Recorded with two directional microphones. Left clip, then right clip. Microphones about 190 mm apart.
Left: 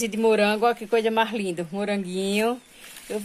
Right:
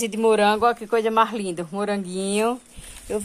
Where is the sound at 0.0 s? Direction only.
Centre (ahead or behind).